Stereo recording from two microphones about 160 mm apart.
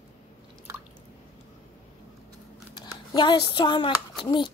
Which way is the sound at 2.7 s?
25° left (ahead or behind).